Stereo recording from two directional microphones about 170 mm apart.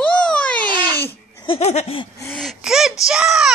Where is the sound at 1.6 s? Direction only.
40° left (ahead or behind).